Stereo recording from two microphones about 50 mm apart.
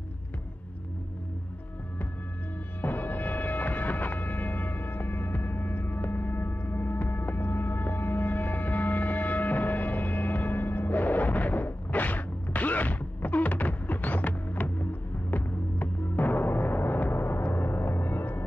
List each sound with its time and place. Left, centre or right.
2.8 s music: left